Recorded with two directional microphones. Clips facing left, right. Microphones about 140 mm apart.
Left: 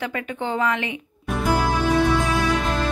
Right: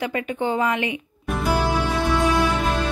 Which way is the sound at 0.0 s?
15° right (ahead or behind).